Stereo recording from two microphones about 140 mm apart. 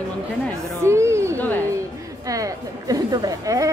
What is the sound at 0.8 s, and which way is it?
A woman's voice, 20° right (ahead or behind).